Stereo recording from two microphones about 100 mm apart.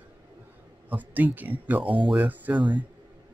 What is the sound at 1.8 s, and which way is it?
Speech, 55° right (ahead or behind).